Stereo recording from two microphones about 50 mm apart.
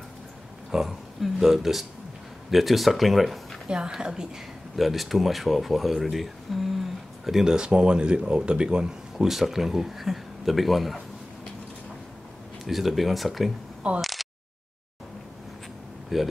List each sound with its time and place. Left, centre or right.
0.7 s speech: centre
3.6 s a woman's voice: centre
4.7 s speech: centre
12.6 s speech: centre
13.9 s speech: right
16.1 s speech: centre